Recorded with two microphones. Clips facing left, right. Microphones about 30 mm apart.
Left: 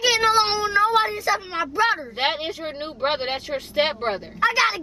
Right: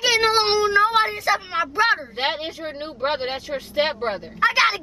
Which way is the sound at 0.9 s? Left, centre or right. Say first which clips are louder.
Right 1 dB; centre.